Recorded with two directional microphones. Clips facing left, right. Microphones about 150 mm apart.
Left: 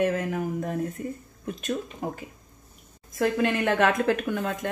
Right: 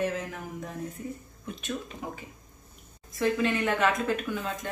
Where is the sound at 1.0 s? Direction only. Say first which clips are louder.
Left 4 dB; 65° left (ahead or behind).